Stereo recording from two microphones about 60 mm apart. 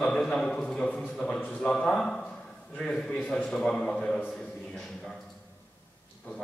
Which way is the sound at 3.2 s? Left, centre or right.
Left.